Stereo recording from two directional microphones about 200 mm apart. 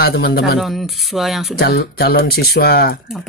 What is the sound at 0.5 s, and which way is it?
Speech, centre (ahead or behind).